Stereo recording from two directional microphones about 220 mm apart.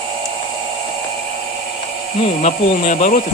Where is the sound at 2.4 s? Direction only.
35° left (ahead or behind).